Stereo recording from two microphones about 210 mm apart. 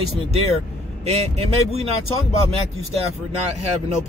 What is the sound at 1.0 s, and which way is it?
Speech, 30° right (ahead or behind).